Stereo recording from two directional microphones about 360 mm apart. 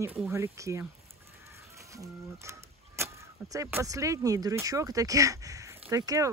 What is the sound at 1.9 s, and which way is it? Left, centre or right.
Speech, centre.